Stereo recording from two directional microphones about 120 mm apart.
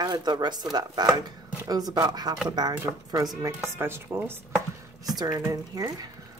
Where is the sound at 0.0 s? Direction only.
35° right (ahead or behind).